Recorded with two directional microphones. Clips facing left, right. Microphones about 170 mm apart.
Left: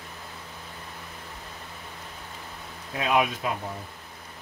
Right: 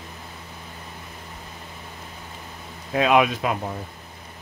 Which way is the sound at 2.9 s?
90° right.